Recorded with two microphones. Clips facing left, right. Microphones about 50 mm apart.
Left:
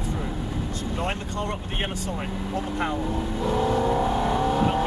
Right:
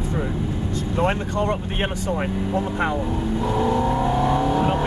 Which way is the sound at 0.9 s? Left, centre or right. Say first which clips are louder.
Right 8 dB; right.